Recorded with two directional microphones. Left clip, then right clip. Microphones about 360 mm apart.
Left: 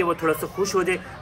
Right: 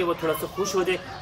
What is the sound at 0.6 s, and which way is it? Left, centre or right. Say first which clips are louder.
Speech: left 1 dB; centre.